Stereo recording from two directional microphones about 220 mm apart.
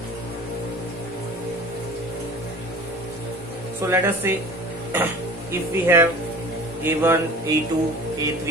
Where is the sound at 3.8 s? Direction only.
15° right (ahead or behind).